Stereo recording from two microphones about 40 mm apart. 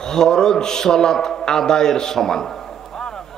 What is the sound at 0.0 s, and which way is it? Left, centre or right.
A man's voice, centre.